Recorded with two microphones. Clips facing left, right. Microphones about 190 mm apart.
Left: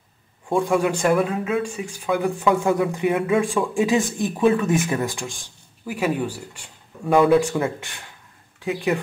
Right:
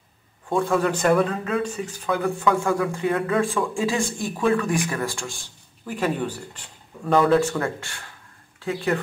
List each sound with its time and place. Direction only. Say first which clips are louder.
0.6 s speech: left 1 dB; 15° left (ahead or behind)